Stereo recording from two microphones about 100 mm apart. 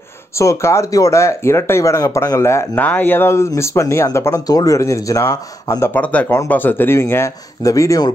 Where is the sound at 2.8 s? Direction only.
15° left (ahead or behind); by 5.9 s 35° left (ahead or behind).